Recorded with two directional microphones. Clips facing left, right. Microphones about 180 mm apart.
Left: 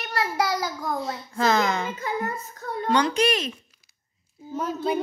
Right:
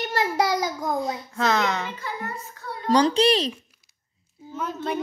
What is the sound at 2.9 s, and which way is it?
Speech, 35° right (ahead or behind).